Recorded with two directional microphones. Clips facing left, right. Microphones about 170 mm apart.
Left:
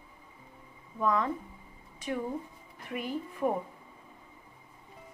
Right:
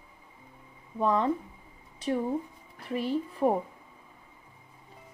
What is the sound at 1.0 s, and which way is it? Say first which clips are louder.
Speech: right 3 dB; 30° right (ahead or behind).